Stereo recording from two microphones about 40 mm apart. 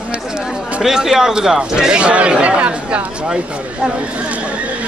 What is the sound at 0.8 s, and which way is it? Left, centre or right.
Speech, centre.